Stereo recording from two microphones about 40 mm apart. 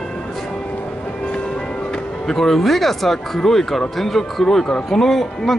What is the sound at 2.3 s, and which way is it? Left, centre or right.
Speech, centre.